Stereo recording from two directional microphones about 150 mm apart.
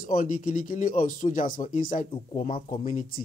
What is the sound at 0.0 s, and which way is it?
Speech, 65° left (ahead or behind).